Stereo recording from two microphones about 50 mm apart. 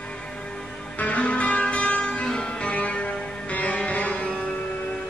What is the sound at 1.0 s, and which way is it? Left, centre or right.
Music, left.